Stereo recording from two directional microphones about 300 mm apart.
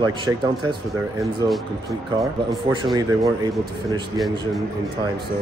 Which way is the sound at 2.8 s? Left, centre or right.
Centre.